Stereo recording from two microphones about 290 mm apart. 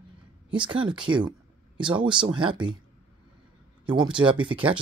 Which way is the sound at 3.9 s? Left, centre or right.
Centre.